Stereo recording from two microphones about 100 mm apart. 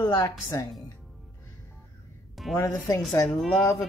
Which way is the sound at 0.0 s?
35° left (ahead or behind).